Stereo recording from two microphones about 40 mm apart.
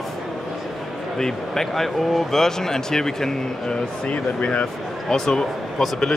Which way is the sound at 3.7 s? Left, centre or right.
Left.